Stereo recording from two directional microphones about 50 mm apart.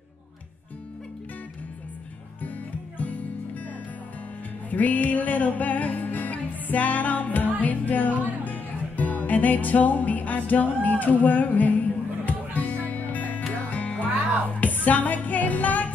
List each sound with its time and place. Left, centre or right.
2.4 s music: left